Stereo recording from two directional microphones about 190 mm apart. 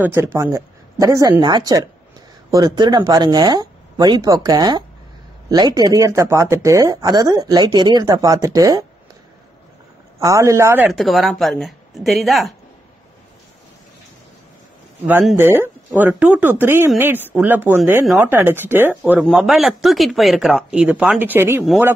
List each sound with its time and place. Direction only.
0.0 s speech: 10° right (ahead or behind)
10.2 s speech: 15° right (ahead or behind)
10.9 s speech: centre (ahead or behind)
15.0 s speech: 10° right (ahead or behind)